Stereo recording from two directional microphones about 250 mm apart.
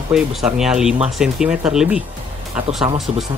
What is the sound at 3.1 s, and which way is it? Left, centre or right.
Speech, right.